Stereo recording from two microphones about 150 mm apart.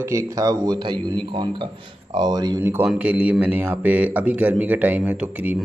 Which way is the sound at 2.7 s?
10° right (ahead or behind).